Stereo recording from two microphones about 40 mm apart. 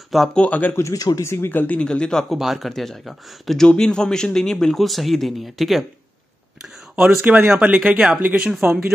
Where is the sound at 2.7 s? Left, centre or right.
Centre.